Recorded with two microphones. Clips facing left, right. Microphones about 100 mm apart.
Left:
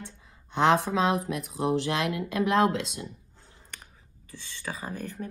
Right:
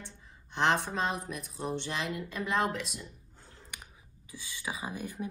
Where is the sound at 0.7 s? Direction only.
90° left.